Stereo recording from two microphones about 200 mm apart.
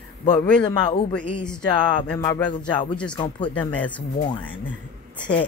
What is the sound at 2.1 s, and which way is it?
Speech, 20° left (ahead or behind).